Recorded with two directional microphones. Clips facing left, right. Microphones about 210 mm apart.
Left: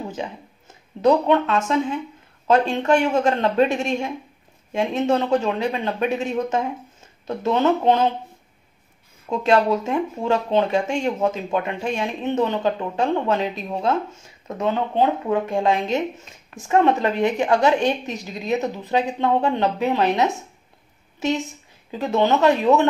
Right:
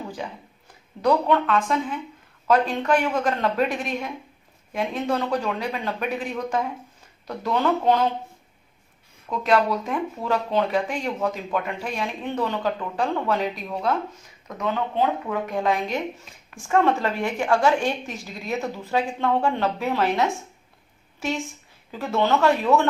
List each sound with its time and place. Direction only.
0.1 s speech: 25° left (ahead or behind)
9.3 s speech: 25° left (ahead or behind)